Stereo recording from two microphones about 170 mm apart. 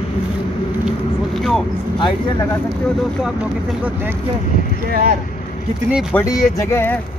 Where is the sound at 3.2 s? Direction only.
5° right (ahead or behind).